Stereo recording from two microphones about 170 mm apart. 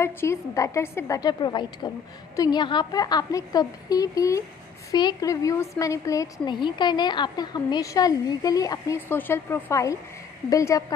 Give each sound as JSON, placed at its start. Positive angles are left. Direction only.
{"t": 0.0, "sound": "a woman's voice", "side_deg": 15}